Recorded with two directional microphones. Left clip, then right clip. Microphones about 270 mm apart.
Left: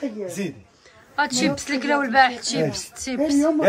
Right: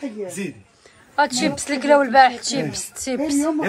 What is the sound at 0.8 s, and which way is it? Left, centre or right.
Speech, centre.